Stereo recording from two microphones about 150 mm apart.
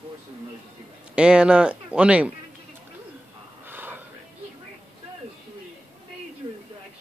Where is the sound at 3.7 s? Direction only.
10° right (ahead or behind).